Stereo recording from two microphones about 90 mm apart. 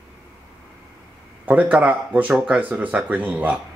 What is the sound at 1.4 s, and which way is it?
Speech, 15° right (ahead or behind).